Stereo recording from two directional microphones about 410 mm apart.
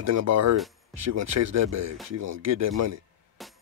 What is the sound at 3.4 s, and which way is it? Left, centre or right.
Music, centre.